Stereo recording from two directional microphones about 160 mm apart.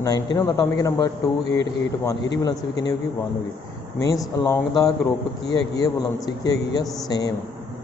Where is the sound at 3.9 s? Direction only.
20° left (ahead or behind).